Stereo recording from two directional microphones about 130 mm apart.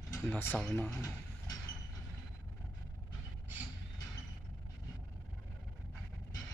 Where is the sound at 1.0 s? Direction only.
25° left (ahead or behind).